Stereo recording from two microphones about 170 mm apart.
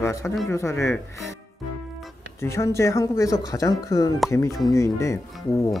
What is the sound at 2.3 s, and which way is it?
Speech, 15° left (ahead or behind).